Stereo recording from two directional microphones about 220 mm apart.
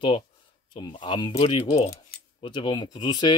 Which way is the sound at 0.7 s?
20° left (ahead or behind).